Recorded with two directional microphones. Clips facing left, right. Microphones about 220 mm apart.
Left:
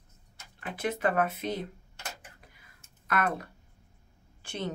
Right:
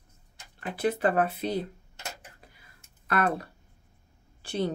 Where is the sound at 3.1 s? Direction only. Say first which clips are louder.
Right 3 dB; 30° right (ahead or behind).